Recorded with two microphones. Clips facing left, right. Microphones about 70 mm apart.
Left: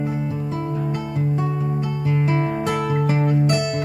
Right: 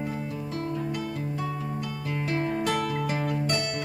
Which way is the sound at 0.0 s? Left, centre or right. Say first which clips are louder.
Left 7 dB; centre.